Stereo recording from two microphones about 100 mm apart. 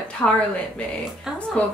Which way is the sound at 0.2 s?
15° left (ahead or behind).